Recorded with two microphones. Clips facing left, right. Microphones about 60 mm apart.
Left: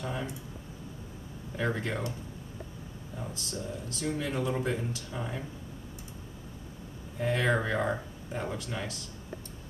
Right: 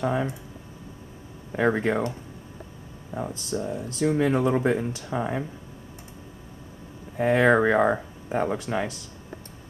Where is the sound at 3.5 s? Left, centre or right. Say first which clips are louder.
Right 10 dB; right.